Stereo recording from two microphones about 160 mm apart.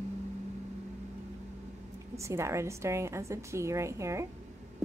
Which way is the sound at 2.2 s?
15° right (ahead or behind).